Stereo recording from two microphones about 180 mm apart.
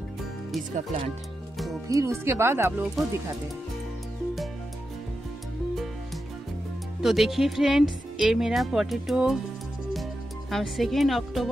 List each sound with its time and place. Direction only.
0.7 s speech: 35° right (ahead or behind)
1.9 s speech: 15° right (ahead or behind)
3.0 s speech: centre (ahead or behind)
7.0 s speech: centre (ahead or behind)
10.5 s speech: centre (ahead or behind)